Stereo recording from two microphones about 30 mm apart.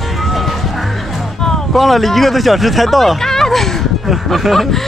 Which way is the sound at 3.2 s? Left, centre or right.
Centre.